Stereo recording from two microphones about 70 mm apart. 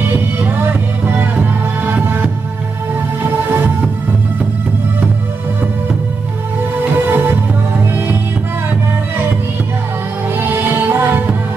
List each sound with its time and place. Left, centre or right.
0.1 s music: right
3.5 s music: right
6.9 s music: right
10.5 s music: right